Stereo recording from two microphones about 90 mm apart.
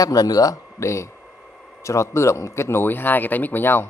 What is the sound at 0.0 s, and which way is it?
Speech, 45° left (ahead or behind).